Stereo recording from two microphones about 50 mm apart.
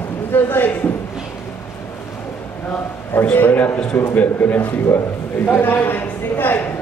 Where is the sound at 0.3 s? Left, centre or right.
Left.